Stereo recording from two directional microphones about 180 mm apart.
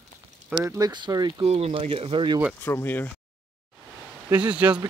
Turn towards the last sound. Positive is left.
turn(degrees=-5)  # may be behind; listen again after turning